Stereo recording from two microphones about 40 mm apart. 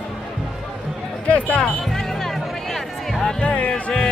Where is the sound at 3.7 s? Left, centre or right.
Centre.